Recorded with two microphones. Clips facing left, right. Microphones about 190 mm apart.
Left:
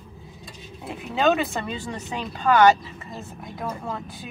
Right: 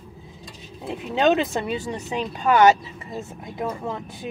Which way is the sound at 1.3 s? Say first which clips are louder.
Right 2 dB; 20° right (ahead or behind).